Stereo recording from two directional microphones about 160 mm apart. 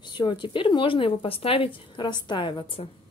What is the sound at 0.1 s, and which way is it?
Speech, 30° left (ahead or behind).